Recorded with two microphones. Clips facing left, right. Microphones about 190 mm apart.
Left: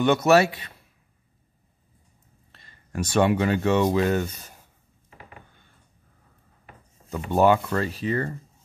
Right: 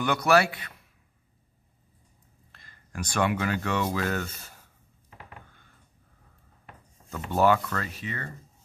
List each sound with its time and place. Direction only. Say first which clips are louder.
0.0 s speech: left 5 dB; 25° left (ahead or behind)
2.5 s speech: left 7 dB; 25° left (ahead or behind)
7.1 s speech: left 4 dB; 20° left (ahead or behind); by 8.3 s 35° left (ahead or behind)